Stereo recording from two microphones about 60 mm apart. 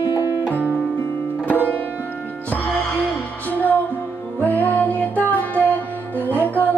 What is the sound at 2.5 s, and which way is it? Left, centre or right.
Music, left.